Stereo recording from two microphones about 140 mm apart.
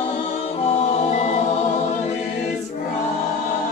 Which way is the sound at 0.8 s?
50° left (ahead or behind).